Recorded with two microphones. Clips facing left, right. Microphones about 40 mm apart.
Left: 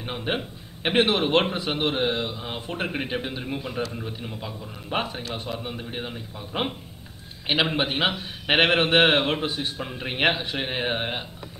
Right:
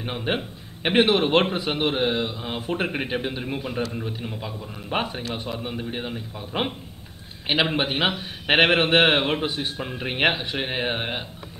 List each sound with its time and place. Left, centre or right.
0.0 s a man's voice: centre
3.8 s a man's voice: centre
7.7 s a man's voice: centre